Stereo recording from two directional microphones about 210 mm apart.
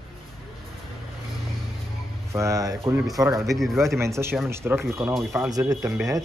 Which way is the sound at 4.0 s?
10° right (ahead or behind).